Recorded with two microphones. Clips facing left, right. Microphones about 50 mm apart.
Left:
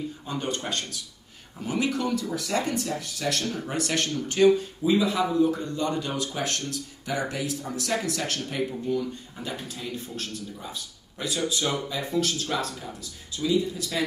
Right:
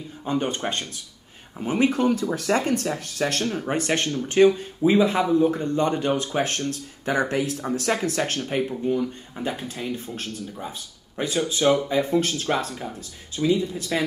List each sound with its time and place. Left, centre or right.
0.2 s speech: right